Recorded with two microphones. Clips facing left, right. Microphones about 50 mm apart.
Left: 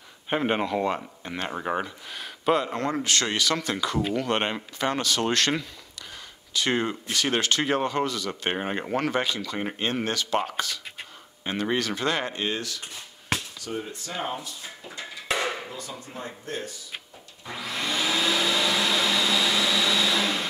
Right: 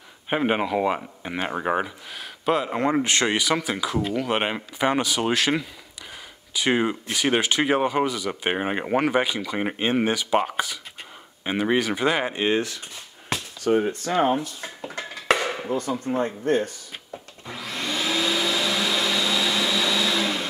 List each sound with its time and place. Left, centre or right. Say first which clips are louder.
0.3 s speech: right 2 dB; centre
2.0 s a sound: even; centre
2.7 s speech: right 4 dB; centre
13.7 s speech: right 13 dB; right
15.3 s a sound: right 6 dB; right
15.7 s speech: right 13 dB; right
17.5 s vacuum cleaner: even; centre